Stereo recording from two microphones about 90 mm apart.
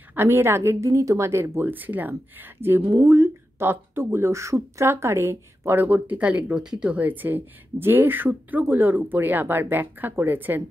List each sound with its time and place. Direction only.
0.1 s speech: 25° right (ahead or behind)